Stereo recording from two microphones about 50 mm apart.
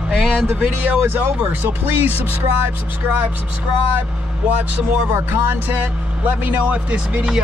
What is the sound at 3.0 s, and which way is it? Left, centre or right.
Speech, right.